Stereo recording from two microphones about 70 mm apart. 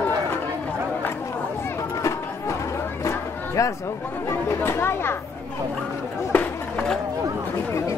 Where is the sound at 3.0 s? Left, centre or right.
Left.